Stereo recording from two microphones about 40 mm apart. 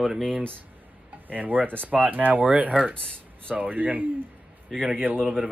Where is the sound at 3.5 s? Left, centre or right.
Right.